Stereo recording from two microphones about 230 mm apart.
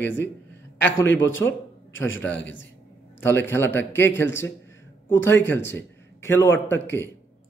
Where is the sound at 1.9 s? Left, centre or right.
Left.